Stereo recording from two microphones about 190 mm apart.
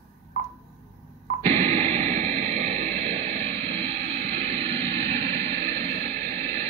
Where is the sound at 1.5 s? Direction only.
35° right (ahead or behind).